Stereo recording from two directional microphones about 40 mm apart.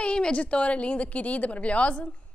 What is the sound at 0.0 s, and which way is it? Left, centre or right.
A woman's voice, left.